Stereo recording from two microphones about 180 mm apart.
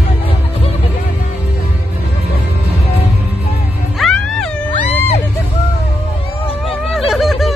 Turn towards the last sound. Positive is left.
turn(degrees=0)  # may be behind; listen again after turning